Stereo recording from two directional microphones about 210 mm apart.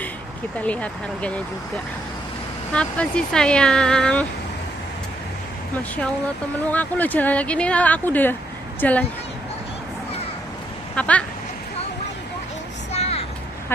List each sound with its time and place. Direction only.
0.6 s speech: 5° left (ahead or behind)
2.7 s speech: 5° left (ahead or behind)
6.7 s speech: 10° left (ahead or behind)
11.0 s a sound: 5° left (ahead or behind)
12.9 s vehicle: 30° left (ahead or behind)